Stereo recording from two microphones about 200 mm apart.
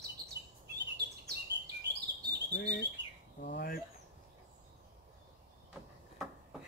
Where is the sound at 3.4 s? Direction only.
50° left (ahead or behind).